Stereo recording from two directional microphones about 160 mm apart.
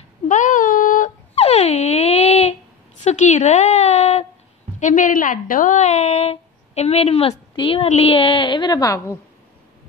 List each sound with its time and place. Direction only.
0.3 s child singing: 50° left (ahead or behind)
1.3 s wail: 40° left (ahead or behind)
3.0 s a sound: 45° left (ahead or behind)
4.7 s a woman's voice: 50° left (ahead or behind); by 9.2 s 20° left (ahead or behind)